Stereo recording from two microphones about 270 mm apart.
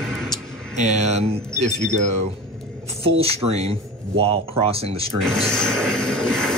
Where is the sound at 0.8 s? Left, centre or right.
Right.